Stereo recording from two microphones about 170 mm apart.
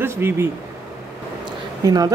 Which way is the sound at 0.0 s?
15° right (ahead or behind).